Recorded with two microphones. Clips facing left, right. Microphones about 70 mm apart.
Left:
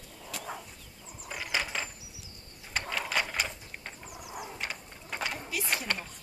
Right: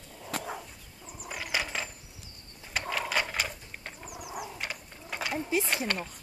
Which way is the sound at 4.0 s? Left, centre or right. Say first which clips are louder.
Right 4 dB; centre.